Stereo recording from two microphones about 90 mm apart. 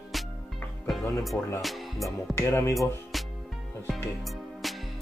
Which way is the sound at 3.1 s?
Centre (ahead or behind).